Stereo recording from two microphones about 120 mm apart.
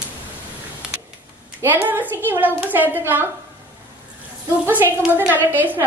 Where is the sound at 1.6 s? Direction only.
20° right (ahead or behind).